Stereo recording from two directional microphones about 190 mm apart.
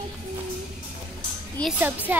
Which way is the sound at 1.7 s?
10° right (ahead or behind).